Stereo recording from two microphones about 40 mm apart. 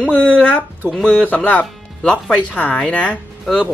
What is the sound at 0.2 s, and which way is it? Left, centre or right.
Speech, left.